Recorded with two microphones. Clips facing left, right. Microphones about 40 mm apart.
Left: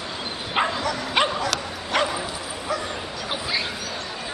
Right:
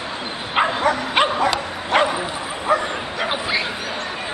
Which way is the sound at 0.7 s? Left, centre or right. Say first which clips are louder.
Right 7 dB; right.